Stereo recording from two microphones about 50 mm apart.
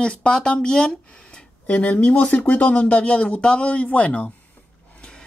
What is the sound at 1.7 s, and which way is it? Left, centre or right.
Speech, left.